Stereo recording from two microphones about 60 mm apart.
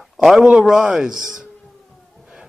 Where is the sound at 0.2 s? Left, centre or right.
Centre.